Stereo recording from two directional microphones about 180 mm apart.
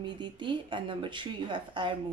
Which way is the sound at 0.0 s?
25° right (ahead or behind).